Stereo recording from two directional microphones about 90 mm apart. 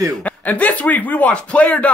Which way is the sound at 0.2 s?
15° left (ahead or behind).